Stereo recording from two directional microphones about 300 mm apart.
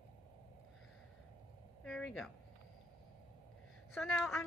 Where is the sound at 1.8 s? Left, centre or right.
Centre.